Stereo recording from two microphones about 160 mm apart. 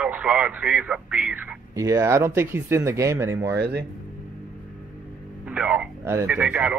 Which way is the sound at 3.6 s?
90° right.